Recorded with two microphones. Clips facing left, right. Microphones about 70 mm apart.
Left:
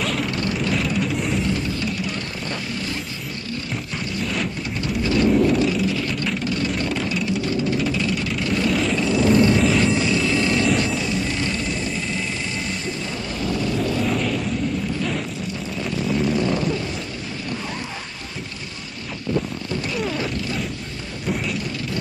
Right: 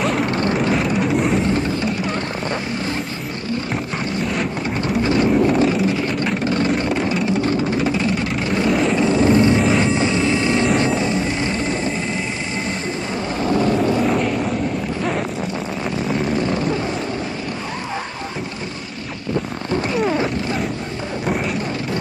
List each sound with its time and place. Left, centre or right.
0.2 s vehicle: right
0.9 s vehicle: right
1.4 s vehicle: right
4.8 s vehicle: right
8.6 s vehicle: centre
8.9 s vehicle: right
13.4 s vehicle: right
14.0 s vehicle: centre
19.9 s a sound: right